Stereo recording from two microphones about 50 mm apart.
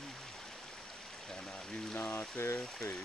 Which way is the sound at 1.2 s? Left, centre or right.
Centre.